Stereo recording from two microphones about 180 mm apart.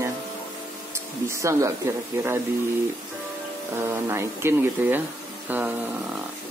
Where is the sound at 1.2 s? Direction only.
15° right (ahead or behind).